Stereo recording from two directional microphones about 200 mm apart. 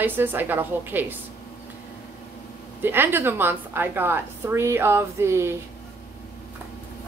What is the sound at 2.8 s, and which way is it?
A woman's voice, 10° right (ahead or behind).